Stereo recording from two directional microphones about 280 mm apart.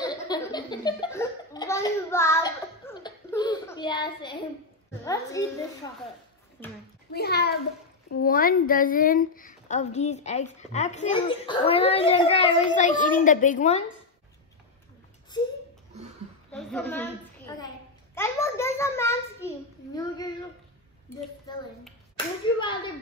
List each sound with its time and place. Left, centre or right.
0.0 s a sound: centre
5.0 s a child's voice: centre
7.2 s a child's voice: left
16.5 s a woman's voice: centre
22.1 s speech: centre